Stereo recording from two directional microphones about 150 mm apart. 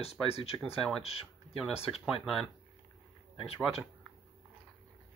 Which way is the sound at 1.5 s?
Centre (ahead or behind).